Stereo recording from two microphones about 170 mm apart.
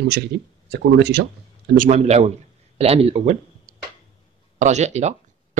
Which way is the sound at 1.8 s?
40° right (ahead or behind).